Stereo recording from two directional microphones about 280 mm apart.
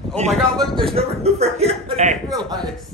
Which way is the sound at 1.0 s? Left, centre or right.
Right.